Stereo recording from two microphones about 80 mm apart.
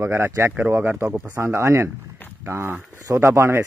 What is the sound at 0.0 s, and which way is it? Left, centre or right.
Speech, right.